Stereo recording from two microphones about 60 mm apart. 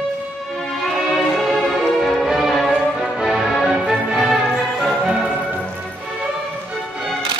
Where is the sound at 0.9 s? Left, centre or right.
Centre.